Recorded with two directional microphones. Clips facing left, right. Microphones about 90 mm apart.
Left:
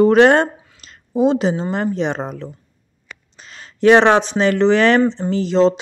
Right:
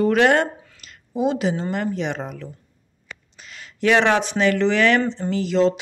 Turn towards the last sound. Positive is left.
turn(degrees=30)  # may be behind; listen again after turning